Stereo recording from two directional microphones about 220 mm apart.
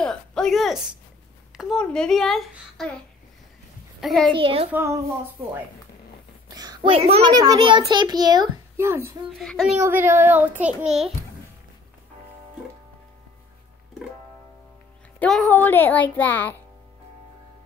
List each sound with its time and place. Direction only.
0.0 s a woman's voice: 5° left (ahead or behind)
4.0 s a child's voice: centre (ahead or behind)
4.3 s a child's voice: 25° right (ahead or behind)
4.7 s a child's voice: 15° right (ahead or behind)
6.5 s a child's voice: 15° right (ahead or behind)
9.4 s a child's voice: centre (ahead or behind)
9.8 s a child's voice: 10° right (ahead or behind)
15.1 s a child's voice: 5° left (ahead or behind)